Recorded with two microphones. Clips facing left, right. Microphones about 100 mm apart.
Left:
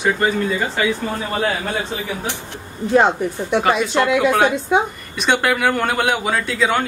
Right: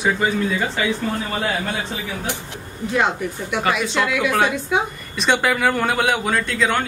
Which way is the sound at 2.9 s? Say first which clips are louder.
Left 6 dB; 35° left (ahead or behind).